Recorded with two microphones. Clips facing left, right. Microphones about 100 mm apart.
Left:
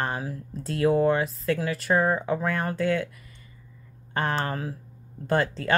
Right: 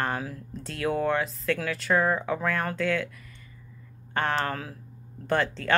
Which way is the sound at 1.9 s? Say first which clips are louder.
Left 1 dB; 20° left (ahead or behind).